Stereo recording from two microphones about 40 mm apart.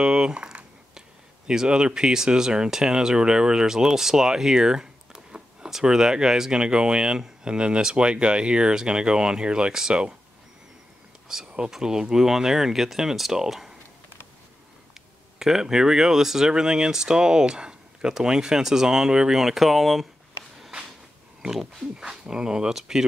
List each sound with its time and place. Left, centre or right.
0.0 s a sound: right
1.5 s speech: centre
6.6 s speech: right
11.3 s speech: centre
15.3 s speech: centre
19.4 s speech: centre
21.4 s pig: centre
21.9 s speech: centre